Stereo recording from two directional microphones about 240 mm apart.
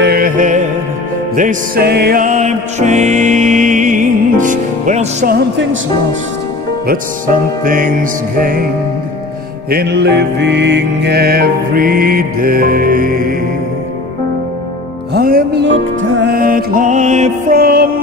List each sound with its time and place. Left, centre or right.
0.0 s music: right
7.6 s music: right
9.7 s music: right
15.1 s music: right